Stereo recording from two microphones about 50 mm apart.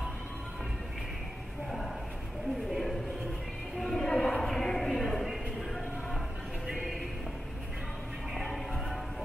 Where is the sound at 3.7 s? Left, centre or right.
Centre.